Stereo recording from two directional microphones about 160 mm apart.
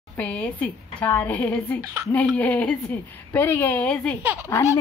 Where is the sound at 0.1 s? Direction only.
10° left (ahead or behind).